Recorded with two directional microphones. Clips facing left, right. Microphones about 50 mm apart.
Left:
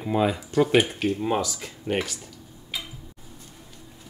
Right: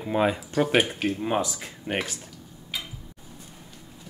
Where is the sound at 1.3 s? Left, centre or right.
Centre.